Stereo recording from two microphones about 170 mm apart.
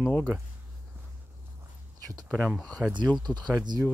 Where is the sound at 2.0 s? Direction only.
20° right (ahead or behind).